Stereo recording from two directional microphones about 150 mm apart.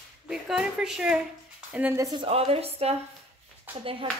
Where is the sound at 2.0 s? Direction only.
25° right (ahead or behind).